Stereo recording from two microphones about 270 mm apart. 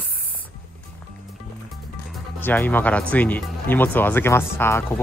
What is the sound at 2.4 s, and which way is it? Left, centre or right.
Speech, centre.